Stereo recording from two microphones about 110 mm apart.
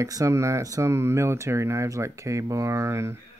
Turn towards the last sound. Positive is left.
turn(degrees=-25)  # may be behind; listen again after turning